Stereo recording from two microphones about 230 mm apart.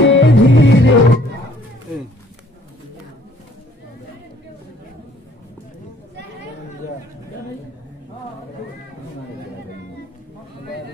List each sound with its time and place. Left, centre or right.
0.0 s music: left